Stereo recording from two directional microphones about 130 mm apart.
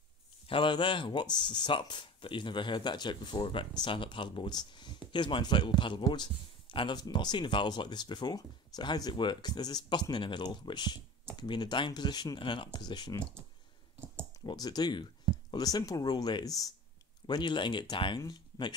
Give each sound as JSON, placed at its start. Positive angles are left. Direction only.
{"t": 0.5, "sound": "speech", "side_deg": 40}
{"t": 14.4, "sound": "speech", "side_deg": 30}